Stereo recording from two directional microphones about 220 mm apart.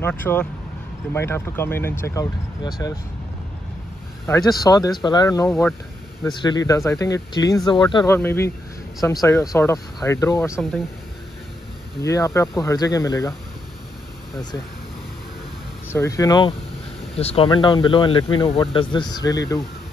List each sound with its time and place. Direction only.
0.0 s speech: 10° left (ahead or behind)
4.3 s speech: 15° left (ahead or behind)
5.5 s speech: centre (ahead or behind)
6.4 s speech: 15° left (ahead or behind)
10.5 s speech: centre (ahead or behind)
12.0 s speech: 15° left (ahead or behind)
15.9 s speech: 15° left (ahead or behind)